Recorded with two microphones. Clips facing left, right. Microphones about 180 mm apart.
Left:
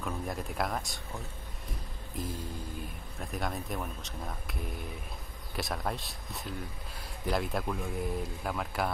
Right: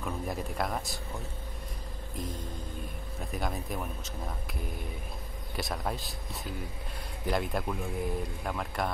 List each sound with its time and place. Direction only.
0.0 s speech: centre (ahead or behind)
2.1 s music: 5° left (ahead or behind)
3.2 s speech: centre (ahead or behind)